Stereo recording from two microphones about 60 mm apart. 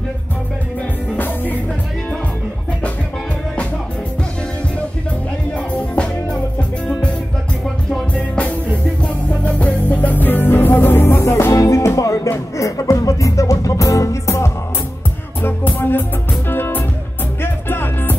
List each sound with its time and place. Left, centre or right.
1.1 s music: left
5.7 s music: left
8.1 s music: left
15.4 s music: left